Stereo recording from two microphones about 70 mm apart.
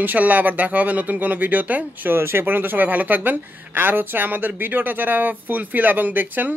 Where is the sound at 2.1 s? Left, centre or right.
Right.